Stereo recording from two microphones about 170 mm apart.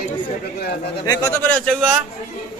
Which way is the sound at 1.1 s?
10° left (ahead or behind).